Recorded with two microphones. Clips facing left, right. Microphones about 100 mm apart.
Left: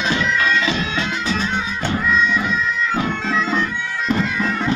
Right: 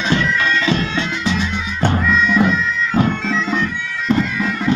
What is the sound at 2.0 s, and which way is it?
Bagpipes, centre (ahead or behind).